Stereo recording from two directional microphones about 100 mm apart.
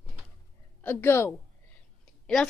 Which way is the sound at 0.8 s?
25° left (ahead or behind).